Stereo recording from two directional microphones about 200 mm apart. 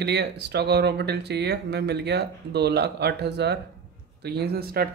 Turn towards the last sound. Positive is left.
turn(degrees=-50)  # may be behind; listen again after turning